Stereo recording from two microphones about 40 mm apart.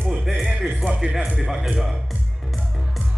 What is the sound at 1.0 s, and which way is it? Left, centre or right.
Speech, right.